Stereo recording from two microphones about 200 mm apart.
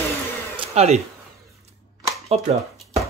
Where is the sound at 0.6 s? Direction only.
30° right (ahead or behind).